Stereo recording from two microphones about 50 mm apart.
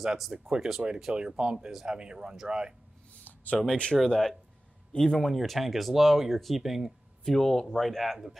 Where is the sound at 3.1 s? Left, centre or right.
Left.